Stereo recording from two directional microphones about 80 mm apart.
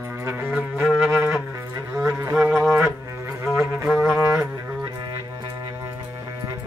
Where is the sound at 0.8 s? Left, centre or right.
Centre.